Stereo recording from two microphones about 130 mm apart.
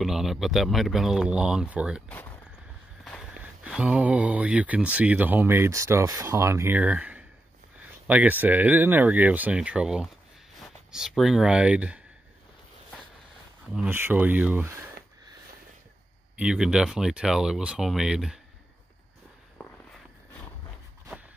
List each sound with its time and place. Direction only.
0.0 s speech: centre (ahead or behind)
2.0 s speech: 15° left (ahead or behind)
3.0 s speech: 5° right (ahead or behind)
13.8 s speech: 15° right (ahead or behind)
16.3 s speech: 5° right (ahead or behind)